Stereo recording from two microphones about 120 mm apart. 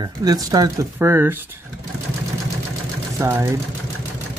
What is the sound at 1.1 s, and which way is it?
Speech, 15° right (ahead or behind).